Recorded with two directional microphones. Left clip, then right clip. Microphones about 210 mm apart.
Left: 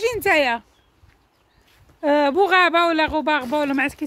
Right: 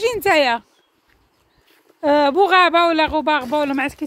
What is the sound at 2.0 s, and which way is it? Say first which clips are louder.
Speech: right 3 dB; 5° right (ahead or behind).